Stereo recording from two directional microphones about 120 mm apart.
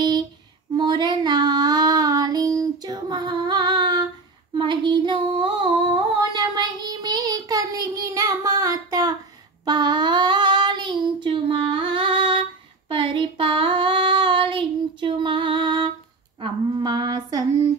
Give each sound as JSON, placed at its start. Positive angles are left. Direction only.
{"t": 0.7, "sound": "child singing", "side_deg": -35}
{"t": 4.6, "sound": "female singing", "side_deg": -40}
{"t": 9.7, "sound": "child singing", "side_deg": -35}
{"t": 16.3, "sound": "a sound", "side_deg": -40}